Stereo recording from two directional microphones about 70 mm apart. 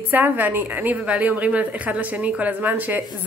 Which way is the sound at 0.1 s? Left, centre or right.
Right.